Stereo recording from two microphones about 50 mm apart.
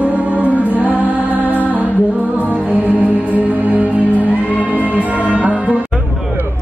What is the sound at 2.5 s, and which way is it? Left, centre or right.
Music, right.